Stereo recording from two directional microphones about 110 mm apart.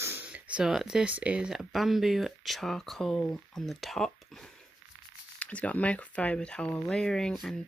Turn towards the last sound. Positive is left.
turn(degrees=5)  # may be behind; listen again after turning